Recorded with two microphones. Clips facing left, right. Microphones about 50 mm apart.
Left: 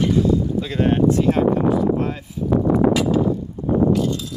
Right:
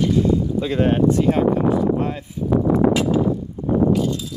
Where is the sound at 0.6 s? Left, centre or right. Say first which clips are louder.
Right 1 dB; centre.